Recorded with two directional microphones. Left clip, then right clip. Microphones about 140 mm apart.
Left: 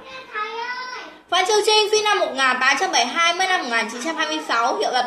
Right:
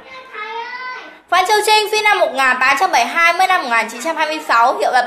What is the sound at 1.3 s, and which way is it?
A woman's voice, centre (ahead or behind).